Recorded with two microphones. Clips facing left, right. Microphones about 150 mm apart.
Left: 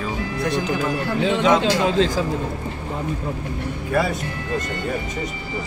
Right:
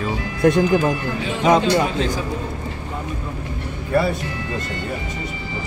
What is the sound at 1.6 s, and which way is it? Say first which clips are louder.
Speech: left 1 dB; 90° left.